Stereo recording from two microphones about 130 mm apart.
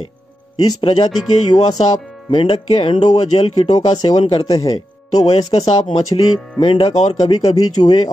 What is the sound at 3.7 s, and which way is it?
Speech, 30° left (ahead or behind).